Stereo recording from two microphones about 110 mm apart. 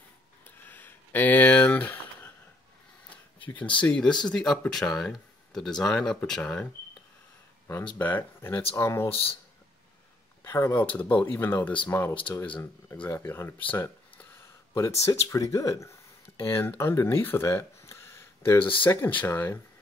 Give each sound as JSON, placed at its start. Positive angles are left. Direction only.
{"t": 0.7, "sound": "a sound", "side_deg": 15}
{"t": 3.3, "sound": "speech", "side_deg": 15}
{"t": 9.1, "sound": "speech", "side_deg": 60}
{"t": 10.4, "sound": "speech", "side_deg": 20}
{"t": 18.6, "sound": "speech", "side_deg": 50}
{"t": 18.9, "sound": "speech", "side_deg": 20}